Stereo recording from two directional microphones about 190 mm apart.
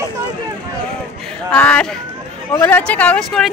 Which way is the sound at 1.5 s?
5° left (ahead or behind).